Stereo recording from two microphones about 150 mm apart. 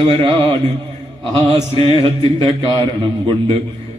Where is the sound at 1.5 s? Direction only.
35° right (ahead or behind).